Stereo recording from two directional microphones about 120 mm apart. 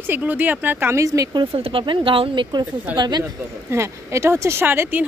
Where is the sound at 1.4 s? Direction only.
50° right (ahead or behind).